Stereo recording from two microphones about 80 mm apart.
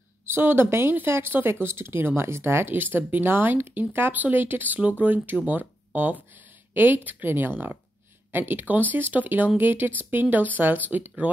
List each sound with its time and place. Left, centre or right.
0.2 s a woman's voice: right